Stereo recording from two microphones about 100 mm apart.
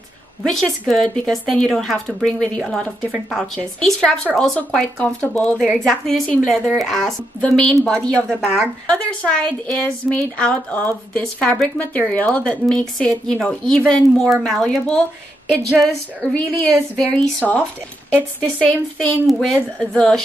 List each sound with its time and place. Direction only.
0.5 s a woman's voice: centre (ahead or behind)
3.0 s a woman's voice: 5° right (ahead or behind)
8.3 s speech: 10° right (ahead or behind)
8.8 s a woman's voice: 10° left (ahead or behind)